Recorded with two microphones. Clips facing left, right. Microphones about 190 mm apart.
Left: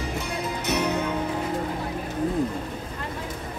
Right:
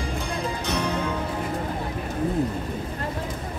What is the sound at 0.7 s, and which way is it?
Music, 10° left (ahead or behind).